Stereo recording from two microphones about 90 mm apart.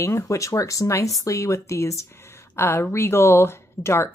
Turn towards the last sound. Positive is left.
turn(degrees=30)  # may be behind; listen again after turning